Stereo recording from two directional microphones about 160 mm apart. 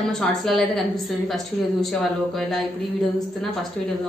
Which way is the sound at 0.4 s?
Centre (ahead or behind).